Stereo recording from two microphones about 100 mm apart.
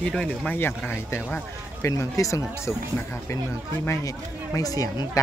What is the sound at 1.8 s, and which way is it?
Speech, 30° left (ahead or behind).